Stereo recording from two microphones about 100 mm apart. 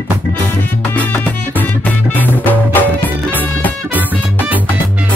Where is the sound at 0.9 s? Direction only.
15° left (ahead or behind).